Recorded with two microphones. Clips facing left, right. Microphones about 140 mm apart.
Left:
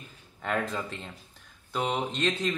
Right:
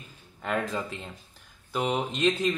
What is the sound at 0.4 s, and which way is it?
Speech, centre (ahead or behind).